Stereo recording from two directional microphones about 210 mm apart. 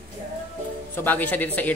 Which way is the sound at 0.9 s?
10° left (ahead or behind).